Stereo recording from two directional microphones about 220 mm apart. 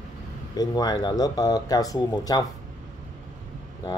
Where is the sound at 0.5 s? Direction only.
15° left (ahead or behind).